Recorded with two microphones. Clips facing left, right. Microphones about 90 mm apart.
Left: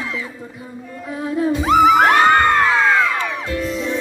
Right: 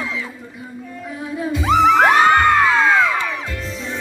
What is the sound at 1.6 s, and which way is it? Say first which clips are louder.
Music: even; 5° left (ahead or behind).